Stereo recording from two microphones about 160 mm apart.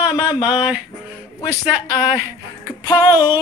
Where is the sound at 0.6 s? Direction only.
5° right (ahead or behind).